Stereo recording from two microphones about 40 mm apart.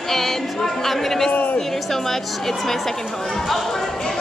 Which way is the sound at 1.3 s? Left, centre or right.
Left.